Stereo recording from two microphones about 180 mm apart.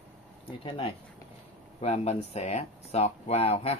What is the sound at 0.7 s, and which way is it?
Speech, 30° left (ahead or behind).